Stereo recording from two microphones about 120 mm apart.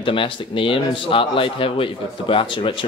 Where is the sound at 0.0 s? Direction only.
45° left (ahead or behind).